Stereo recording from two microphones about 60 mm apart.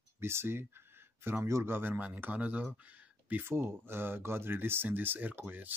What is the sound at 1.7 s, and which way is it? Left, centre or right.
Speech, right.